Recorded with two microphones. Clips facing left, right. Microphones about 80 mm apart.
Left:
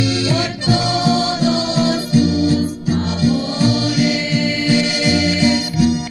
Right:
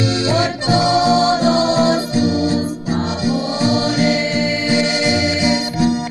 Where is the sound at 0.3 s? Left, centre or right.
Right.